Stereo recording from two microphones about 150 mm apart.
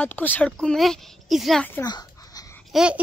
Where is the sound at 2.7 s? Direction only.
5° right (ahead or behind).